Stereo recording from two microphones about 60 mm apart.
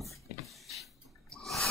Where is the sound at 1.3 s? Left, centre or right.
Centre.